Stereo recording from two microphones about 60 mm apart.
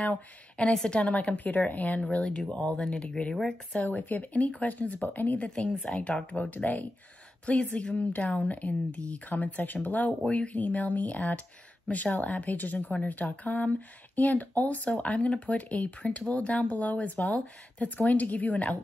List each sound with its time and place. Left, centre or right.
0.0 s speech: left
2.0 s speech: centre
3.8 s speech: left
5.5 s speech: centre
6.5 s speech: left